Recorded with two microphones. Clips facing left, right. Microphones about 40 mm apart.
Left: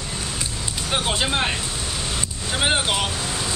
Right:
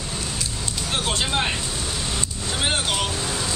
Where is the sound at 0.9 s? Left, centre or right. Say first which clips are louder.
Left 2 dB; centre.